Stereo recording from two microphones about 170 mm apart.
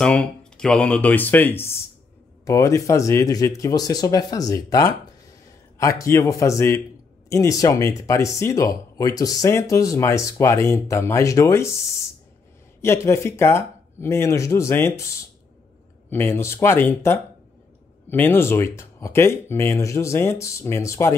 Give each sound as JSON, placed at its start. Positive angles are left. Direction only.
{"t": 0.0, "sound": "speech", "side_deg": 5}
{"t": 12.8, "sound": "speech", "side_deg": 15}
{"t": 16.1, "sound": "speech", "side_deg": 15}